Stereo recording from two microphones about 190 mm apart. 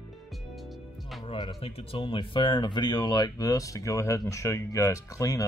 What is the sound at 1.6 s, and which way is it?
Speech, 30° left (ahead or behind).